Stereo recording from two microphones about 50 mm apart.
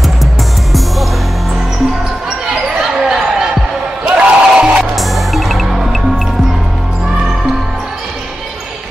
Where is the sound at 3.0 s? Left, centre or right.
Centre.